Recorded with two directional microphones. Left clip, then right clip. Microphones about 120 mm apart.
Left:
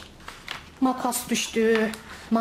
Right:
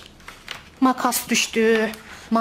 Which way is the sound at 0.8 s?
40° right (ahead or behind).